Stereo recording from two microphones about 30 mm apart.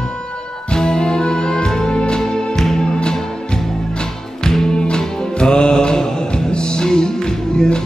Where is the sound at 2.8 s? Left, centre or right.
Left.